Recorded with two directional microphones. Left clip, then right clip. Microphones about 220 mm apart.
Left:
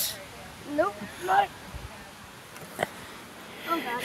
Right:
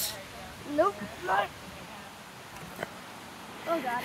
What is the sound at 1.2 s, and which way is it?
Speech, 5° right (ahead or behind).